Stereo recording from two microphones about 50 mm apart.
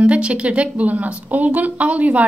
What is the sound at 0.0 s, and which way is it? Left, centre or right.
A woman's voice, right.